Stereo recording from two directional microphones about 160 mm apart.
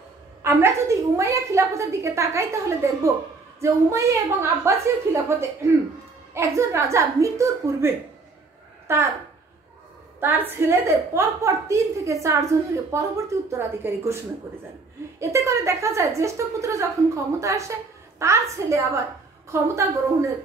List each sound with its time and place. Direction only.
0.4 s a woman's voice: 15° right (ahead or behind)
10.2 s a woman's voice: 15° right (ahead or behind)
15.1 s a woman's voice: 20° right (ahead or behind)